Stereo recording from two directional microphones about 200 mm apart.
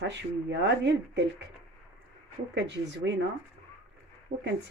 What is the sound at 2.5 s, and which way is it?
Speech, 60° right (ahead or behind).